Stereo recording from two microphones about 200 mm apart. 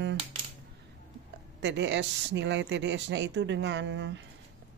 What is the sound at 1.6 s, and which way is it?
Speech, 60° right (ahead or behind).